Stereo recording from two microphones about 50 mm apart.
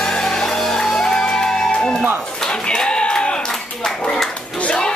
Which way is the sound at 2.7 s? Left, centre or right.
Centre.